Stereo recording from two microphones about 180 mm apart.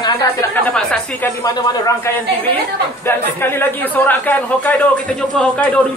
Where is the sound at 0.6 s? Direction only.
5° left (ahead or behind).